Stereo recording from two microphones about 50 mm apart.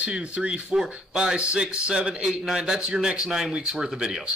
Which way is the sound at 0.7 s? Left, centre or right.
Centre.